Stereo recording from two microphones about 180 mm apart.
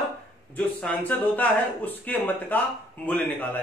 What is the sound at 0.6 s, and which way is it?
A man's voice, 5° left (ahead or behind).